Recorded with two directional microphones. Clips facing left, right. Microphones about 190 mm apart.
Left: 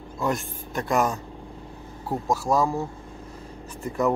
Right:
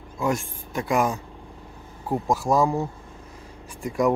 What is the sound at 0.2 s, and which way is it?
Speech, 10° right (ahead or behind).